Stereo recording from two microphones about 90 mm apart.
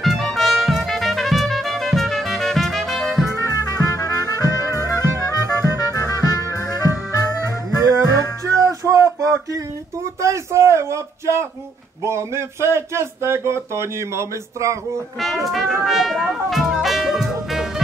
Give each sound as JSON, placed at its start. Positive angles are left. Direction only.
{"t": 0.0, "sound": "music", "side_deg": 0}
{"t": 3.3, "sound": "trumpet", "side_deg": 40}
{"t": 6.5, "sound": "music", "side_deg": 40}
{"t": 8.5, "sound": "a sound", "side_deg": -35}
{"t": 10.2, "sound": "a man's voice", "side_deg": -35}
{"t": 15.1, "sound": "speech", "side_deg": 0}
{"t": 15.8, "sound": "music", "side_deg": 0}